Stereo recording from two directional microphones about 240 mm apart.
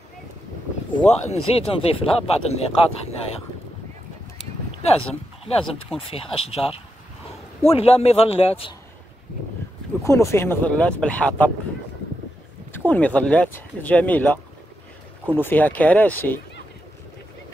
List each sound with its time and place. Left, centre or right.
0.9 s speech: left
5.9 s speech: left
10.0 s speech: centre
12.7 s speech: centre